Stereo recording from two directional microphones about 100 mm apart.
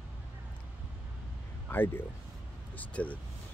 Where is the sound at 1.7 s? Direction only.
20° left (ahead or behind).